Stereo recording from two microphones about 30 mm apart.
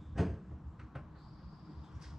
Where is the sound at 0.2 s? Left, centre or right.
Centre.